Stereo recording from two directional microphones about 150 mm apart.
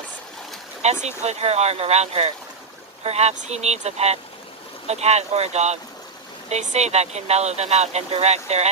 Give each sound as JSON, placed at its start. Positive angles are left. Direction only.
{"t": 1.0, "sound": "speech", "side_deg": -45}